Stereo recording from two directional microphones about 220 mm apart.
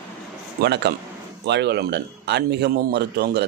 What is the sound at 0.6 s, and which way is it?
Speech, 50° right (ahead or behind).